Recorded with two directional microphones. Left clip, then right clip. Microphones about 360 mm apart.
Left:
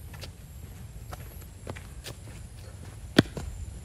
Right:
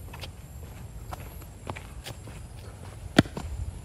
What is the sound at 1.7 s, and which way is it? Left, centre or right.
Walk, centre.